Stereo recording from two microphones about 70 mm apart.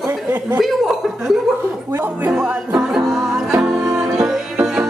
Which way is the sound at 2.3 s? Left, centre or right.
Centre.